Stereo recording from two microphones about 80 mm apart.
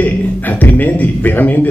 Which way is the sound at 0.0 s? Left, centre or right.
Left.